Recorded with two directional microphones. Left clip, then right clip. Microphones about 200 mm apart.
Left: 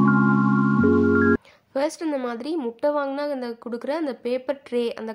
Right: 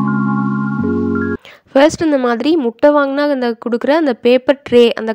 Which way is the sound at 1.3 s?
40° right (ahead or behind).